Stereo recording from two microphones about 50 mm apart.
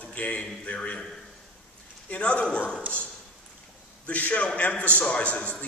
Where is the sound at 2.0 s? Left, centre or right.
Left.